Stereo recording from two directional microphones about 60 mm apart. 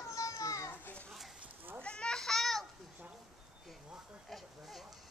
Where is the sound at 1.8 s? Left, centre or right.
Centre.